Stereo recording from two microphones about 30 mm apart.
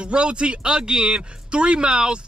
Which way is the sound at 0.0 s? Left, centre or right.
Right.